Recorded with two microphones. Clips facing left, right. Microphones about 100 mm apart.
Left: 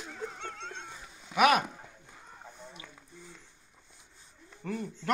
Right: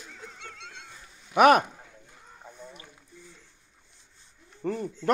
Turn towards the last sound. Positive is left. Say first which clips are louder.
# right 6 dB
turn(degrees=-35)  # may be behind; listen again after turning